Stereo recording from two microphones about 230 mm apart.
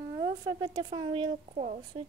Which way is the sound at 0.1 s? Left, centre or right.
Centre.